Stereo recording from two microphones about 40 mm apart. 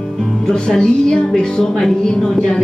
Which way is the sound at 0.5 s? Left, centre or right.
Centre.